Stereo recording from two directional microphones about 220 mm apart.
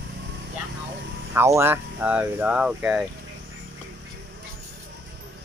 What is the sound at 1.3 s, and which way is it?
Speech, 10° right (ahead or behind).